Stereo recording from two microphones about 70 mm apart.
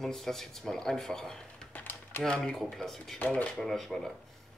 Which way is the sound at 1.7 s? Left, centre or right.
Left.